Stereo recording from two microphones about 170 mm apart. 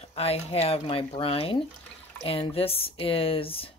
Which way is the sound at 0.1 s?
35° left (ahead or behind).